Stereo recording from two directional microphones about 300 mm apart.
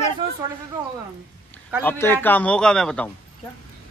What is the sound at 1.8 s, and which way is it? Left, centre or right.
Speech, centre.